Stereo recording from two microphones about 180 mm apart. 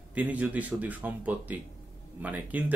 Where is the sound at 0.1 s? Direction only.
10° right (ahead or behind).